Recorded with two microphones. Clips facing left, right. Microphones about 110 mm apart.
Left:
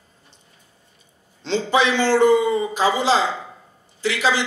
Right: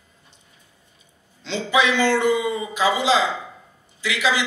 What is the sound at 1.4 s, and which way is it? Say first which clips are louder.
Speech: left 2 dB; 35° left (ahead or behind).